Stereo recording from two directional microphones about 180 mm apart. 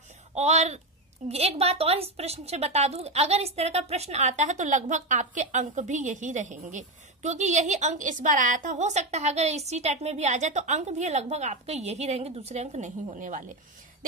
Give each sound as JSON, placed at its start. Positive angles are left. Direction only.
{"t": 0.3, "sound": "a woman's voice", "side_deg": -40}